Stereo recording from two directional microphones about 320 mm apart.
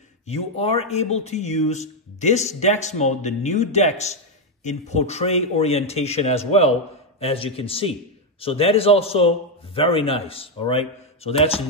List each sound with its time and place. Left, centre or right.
0.3 s a man's voice: centre